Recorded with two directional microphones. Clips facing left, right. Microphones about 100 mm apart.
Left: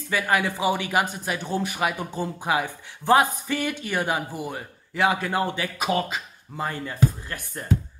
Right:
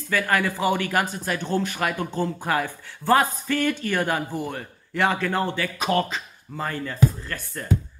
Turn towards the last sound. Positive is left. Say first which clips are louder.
# right 2 dB
turn(degrees=15)  # may be behind; listen again after turning